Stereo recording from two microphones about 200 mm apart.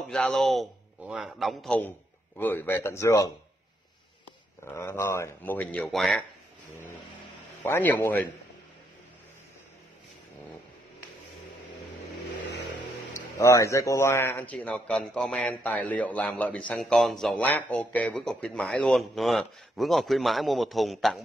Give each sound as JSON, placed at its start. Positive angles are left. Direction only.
{"t": 0.1, "sound": "a man's voice", "side_deg": 0}
{"t": 4.7, "sound": "speech", "side_deg": 15}
{"t": 7.6, "sound": "speech", "side_deg": 10}
{"t": 13.4, "sound": "a man's voice", "side_deg": 15}